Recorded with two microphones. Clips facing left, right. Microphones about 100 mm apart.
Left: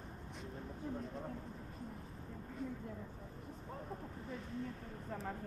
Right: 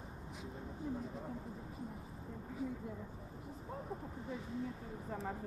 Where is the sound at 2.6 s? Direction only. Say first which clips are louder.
Right 2 dB; centre (ahead or behind).